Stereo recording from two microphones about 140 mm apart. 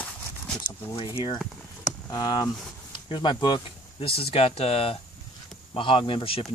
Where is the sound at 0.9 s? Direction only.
35° left (ahead or behind).